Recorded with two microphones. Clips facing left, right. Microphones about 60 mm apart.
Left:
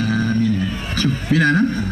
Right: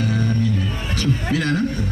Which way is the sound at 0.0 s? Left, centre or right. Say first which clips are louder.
Left 3 dB; left.